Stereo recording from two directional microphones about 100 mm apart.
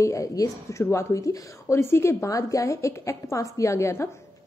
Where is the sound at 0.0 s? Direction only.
35° left (ahead or behind).